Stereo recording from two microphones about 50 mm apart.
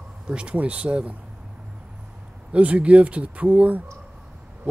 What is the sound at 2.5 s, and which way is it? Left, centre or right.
Speech, right.